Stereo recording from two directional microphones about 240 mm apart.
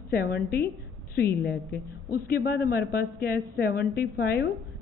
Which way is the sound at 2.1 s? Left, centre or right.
Left.